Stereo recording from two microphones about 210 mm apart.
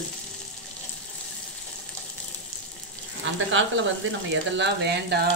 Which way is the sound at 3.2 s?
60° right (ahead or behind).